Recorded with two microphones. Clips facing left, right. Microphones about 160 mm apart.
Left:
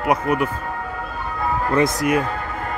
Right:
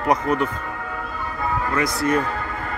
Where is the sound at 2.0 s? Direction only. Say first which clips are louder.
Left 1 dB; 10° left (ahead or behind).